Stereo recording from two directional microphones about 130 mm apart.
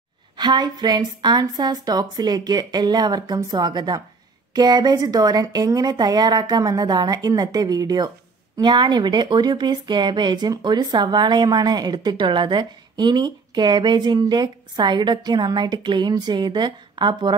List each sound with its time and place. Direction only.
0.4 s speech: 30° right (ahead or behind)